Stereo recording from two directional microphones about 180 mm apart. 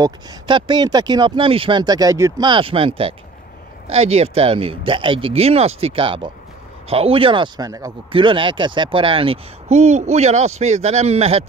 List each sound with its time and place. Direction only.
0.0 s speech: 25° right (ahead or behind)